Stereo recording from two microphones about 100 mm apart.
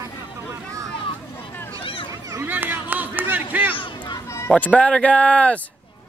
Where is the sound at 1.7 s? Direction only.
60° left (ahead or behind).